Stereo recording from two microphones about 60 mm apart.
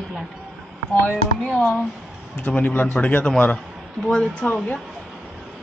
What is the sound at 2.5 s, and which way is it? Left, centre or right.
Speech, left.